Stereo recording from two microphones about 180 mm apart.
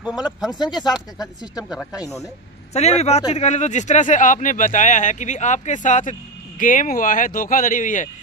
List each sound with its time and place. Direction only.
0.4 s speech: centre (ahead or behind)
1.2 s speech: 20° left (ahead or behind)
2.7 s speech: 35° left (ahead or behind)